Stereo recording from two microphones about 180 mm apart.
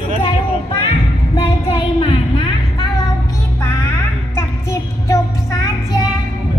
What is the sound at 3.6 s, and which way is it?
Music, 15° left (ahead or behind).